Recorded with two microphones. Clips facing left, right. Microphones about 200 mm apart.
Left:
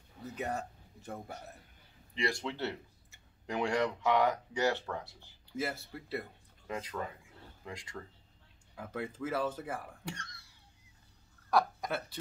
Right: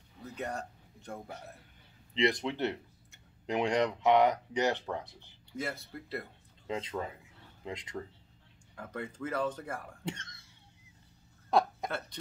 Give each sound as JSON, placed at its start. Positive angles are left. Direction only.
{"t": 0.4, "sound": "speech", "side_deg": 5}
{"t": 2.1, "sound": "speech", "side_deg": -20}
{"t": 5.6, "sound": "speech", "side_deg": 5}
{"t": 6.7, "sound": "speech", "side_deg": -25}
{"t": 8.7, "sound": "speech", "side_deg": 5}
{"t": 10.0, "sound": "speech", "side_deg": -20}
{"t": 11.5, "sound": "a sound", "side_deg": -25}